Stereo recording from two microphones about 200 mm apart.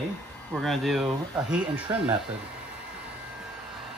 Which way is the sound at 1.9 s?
15° right (ahead or behind).